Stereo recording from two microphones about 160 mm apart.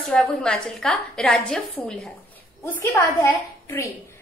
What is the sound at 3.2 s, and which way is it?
Speech, 15° left (ahead or behind).